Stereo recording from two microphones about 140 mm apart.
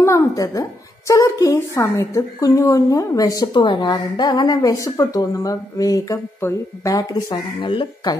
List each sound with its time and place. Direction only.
0.0 s a woman's voice: 20° left (ahead or behind)